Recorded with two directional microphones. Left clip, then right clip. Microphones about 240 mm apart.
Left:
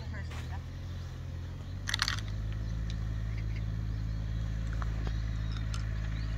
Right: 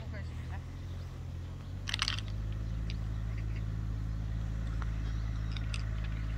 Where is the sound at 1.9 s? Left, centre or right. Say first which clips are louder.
Left 2 dB; right.